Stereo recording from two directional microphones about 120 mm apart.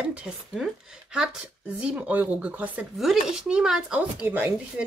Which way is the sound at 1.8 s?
10° right (ahead or behind).